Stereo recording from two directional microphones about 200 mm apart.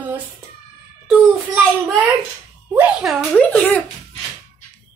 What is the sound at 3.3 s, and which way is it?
Speech, 5° left (ahead or behind).